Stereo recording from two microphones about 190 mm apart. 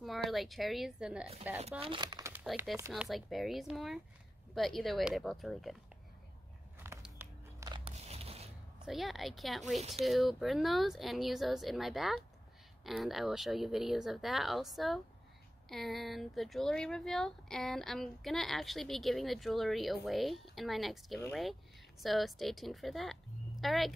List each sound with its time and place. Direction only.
0.0 s speech: centre (ahead or behind)
1.6 s speech: 30° right (ahead or behind); by 2.4 s 15° right (ahead or behind)
2.4 s speech: centre (ahead or behind)
6.8 s biting: 15° right (ahead or behind)
7.6 s biting: 25° right (ahead or behind)
8.8 s speech: centre (ahead or behind)